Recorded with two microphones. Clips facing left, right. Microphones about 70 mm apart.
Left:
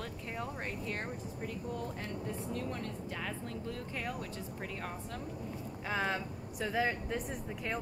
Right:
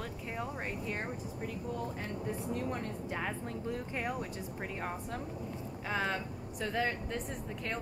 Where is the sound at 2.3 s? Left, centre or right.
Right.